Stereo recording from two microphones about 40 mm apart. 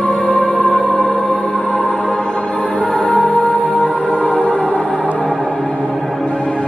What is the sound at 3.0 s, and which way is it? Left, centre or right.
Music, left.